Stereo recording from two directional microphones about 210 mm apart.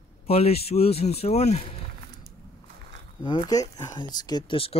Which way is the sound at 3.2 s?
20° left (ahead or behind).